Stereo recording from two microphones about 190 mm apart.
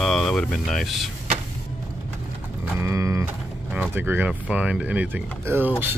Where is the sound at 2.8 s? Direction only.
15° right (ahead or behind).